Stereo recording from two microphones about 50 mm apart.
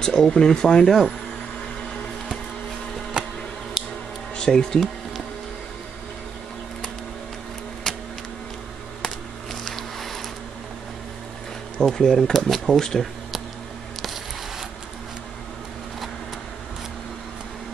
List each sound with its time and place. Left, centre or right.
0.0 s speech: centre
0.8 s speech: centre
4.4 s speech: centre
7.8 s a sound: centre
9.0 s a sound: centre
11.8 s speech: centre